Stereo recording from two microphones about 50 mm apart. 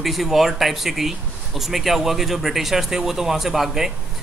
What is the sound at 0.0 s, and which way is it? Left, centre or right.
Speech, centre.